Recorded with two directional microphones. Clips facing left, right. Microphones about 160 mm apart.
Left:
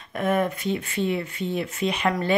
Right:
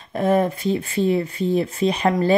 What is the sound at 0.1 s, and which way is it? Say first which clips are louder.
Speech: right 5 dB; 30° right (ahead or behind).